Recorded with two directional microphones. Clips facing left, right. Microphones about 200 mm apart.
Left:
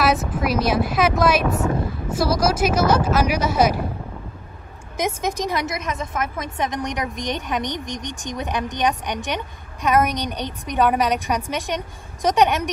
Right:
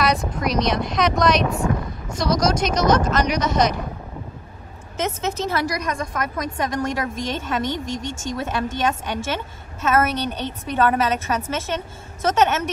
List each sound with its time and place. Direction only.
0.0 s a woman's voice: 5° left (ahead or behind)
4.9 s a woman's voice: 15° left (ahead or behind)